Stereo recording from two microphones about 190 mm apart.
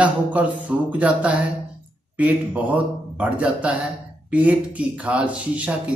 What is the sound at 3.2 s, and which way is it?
A man's voice, 5° right (ahead or behind).